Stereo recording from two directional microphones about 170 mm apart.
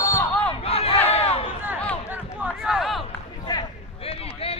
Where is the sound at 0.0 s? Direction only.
15° left (ahead or behind).